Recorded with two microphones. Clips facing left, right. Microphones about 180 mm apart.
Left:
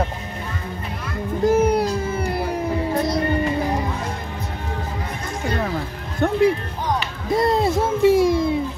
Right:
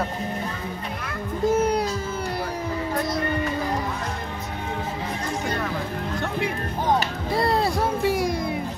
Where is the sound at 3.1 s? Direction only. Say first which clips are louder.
Left 4 dB; 25° left (ahead or behind).